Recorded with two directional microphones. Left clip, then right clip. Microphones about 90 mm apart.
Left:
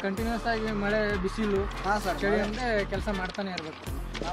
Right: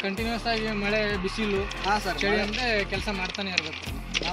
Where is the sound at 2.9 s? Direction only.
Centre (ahead or behind).